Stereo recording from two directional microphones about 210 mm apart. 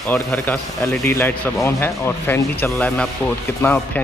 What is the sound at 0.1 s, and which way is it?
Speech, 10° left (ahead or behind).